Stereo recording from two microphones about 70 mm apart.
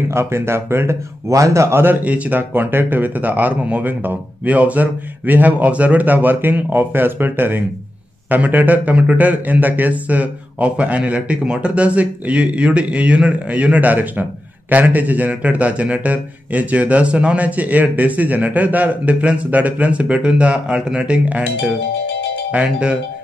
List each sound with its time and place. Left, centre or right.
0.1 s speech: right
1.3 s a man's voice: right
1.8 s speech: right
22.5 s speech: centre